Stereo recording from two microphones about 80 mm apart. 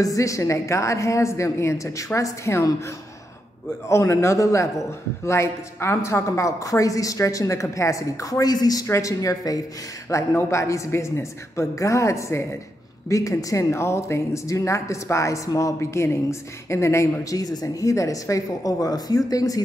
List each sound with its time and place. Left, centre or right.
0.0 s speech: left
3.9 s speech: left
8.8 s speech: left
10.0 s speech: left
13.7 s speech: left